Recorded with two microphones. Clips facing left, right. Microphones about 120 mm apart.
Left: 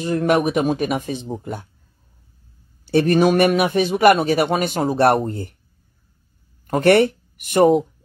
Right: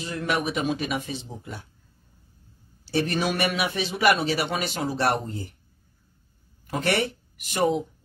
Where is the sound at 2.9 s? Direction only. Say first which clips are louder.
Left 10 dB; 55° left (ahead or behind).